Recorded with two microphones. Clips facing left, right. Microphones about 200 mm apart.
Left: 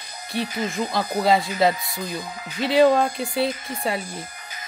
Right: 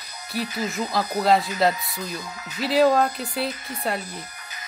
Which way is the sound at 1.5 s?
Centre (ahead or behind).